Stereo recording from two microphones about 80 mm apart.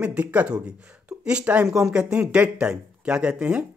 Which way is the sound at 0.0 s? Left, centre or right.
Centre.